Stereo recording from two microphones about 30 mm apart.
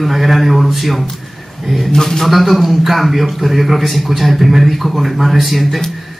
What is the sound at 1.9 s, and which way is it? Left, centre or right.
Speech, centre.